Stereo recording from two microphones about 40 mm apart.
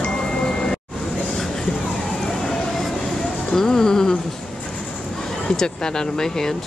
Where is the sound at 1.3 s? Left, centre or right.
Centre.